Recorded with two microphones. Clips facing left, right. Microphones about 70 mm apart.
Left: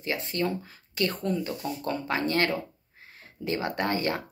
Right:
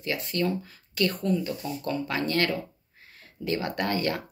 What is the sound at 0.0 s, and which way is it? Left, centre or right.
Speech, left.